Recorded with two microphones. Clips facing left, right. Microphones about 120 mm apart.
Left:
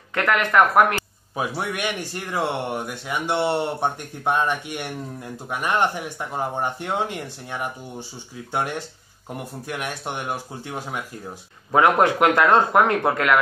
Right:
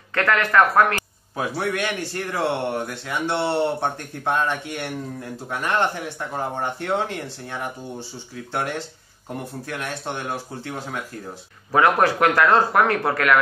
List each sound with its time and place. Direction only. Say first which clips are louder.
0.1 s a man's voice: even; 20° left (ahead or behind)